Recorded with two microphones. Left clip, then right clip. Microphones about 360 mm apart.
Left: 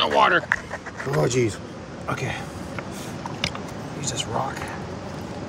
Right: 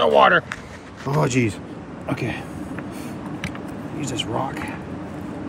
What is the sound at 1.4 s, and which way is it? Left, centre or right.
Speech, right.